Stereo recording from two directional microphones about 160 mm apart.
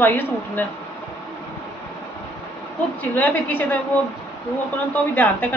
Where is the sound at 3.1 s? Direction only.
10° left (ahead or behind).